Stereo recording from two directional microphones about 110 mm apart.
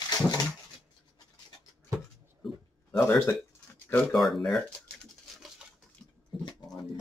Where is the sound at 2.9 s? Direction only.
20° left (ahead or behind).